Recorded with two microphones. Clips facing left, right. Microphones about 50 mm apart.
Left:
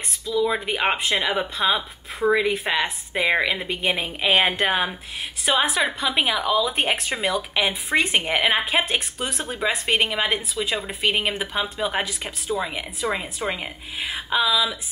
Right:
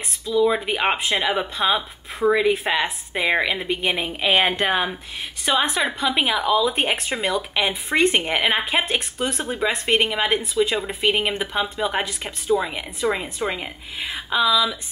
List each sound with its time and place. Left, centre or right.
0.4 s speech: centre